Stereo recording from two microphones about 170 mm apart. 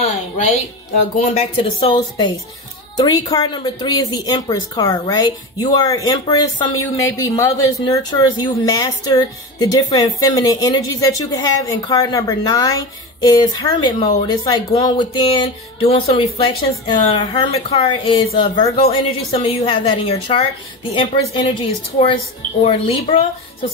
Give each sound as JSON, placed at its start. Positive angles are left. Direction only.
{"t": 1.2, "sound": "a woman's voice", "side_deg": 40}